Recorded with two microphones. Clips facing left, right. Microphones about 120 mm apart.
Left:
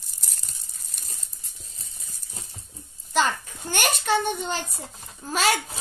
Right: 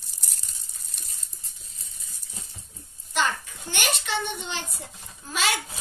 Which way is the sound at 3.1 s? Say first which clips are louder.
Left 3 dB; 40° left (ahead or behind).